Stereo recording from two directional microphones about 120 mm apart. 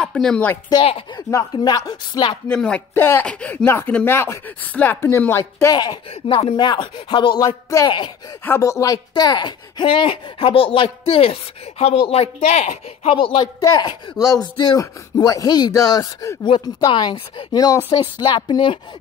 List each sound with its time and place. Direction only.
0.0 s speech: 5° left (ahead or behind)
0.7 s speech: 30° left (ahead or behind)
2.4 s speech: 10° left (ahead or behind)
5.7 s speech: 35° left (ahead or behind)
7.4 s speech: 25° left (ahead or behind); by 13.1 s 65° left (ahead or behind)
13.1 s speech: 45° left (ahead or behind)
13.6 s speech: 35° left (ahead or behind)